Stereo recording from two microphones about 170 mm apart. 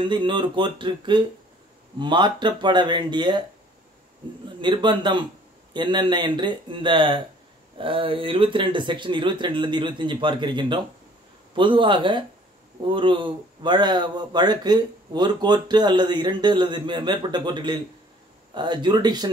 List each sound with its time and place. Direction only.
0.0 s speech: 30° right (ahead or behind)
4.6 s speech: 25° right (ahead or behind)